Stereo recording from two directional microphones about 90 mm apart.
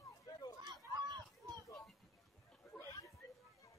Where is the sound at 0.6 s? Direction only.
50° right (ahead or behind).